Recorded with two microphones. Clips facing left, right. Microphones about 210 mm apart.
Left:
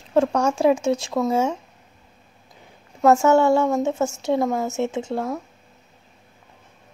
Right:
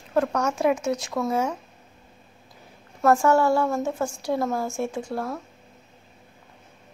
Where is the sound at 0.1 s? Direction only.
30° left (ahead or behind).